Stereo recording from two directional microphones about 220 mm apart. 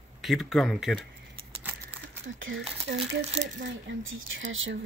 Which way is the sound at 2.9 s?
45° right (ahead or behind).